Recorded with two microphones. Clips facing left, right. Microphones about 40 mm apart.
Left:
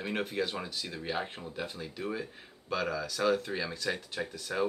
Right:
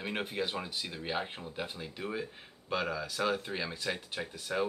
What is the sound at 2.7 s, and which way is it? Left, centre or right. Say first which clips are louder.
Speech: left 1 dB; right.